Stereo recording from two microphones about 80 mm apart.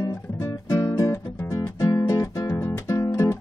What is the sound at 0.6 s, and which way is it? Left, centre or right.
Music, left.